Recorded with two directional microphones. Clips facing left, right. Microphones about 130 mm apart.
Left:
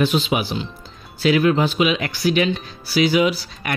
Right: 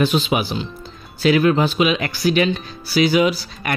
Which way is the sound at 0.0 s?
45° right (ahead or behind).